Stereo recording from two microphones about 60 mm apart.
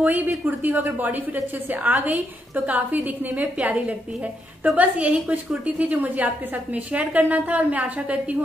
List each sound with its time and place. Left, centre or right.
0.0 s a woman's voice: right
4.7 s a woman's voice: right